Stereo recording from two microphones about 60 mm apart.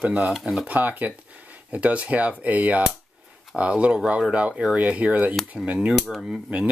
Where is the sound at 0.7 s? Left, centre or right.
Right.